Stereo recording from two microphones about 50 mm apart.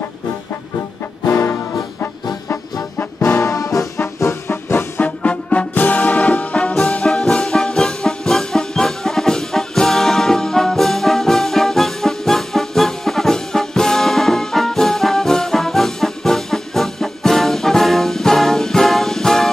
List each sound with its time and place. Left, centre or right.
1.3 s music: left
3.4 s trombone: left
5.0 s music: left
6.9 s music: centre